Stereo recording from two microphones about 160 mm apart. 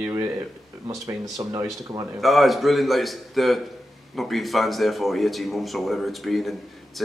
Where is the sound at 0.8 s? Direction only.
25° right (ahead or behind).